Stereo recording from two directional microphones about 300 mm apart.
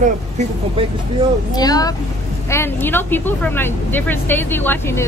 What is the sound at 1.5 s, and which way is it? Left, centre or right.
Speech, centre.